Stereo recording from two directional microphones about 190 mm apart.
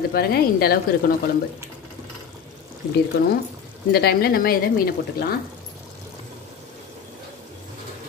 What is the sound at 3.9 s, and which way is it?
Speech, 55° left (ahead or behind).